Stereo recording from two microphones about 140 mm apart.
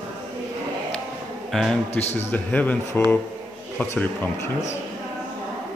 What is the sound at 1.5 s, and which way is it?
A man's voice, centre (ahead or behind).